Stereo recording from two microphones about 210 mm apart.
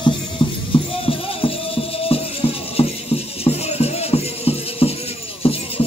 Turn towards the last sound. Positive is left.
turn(degrees=25)  # may be behind; listen again after turning